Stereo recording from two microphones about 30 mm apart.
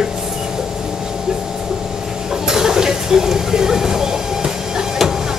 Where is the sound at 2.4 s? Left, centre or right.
Centre.